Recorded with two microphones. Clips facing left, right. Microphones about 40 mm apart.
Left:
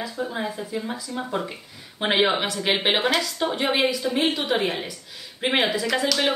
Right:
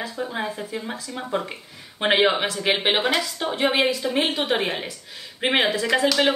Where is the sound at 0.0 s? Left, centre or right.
Centre.